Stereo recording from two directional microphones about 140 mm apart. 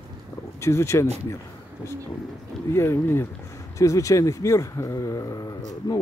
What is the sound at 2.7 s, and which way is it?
Speech, 20° left (ahead or behind).